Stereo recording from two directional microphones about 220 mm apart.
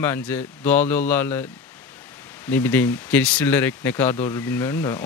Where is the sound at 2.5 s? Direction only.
10° left (ahead or behind).